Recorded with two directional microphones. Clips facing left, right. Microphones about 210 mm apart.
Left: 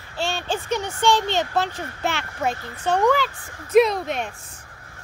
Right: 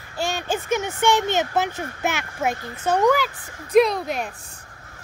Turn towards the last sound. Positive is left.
turn(degrees=0)  # may be behind; listen again after turning